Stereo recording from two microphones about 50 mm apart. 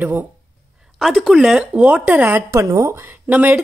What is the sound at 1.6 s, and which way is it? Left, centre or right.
Speech, right.